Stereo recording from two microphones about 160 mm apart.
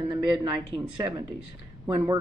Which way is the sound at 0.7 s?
30° right (ahead or behind).